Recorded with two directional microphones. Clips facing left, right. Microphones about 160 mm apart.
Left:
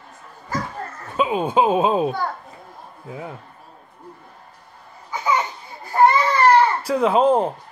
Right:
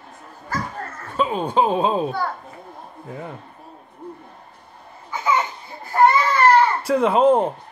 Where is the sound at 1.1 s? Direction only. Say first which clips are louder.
Left 1 dB; 10° left (ahead or behind).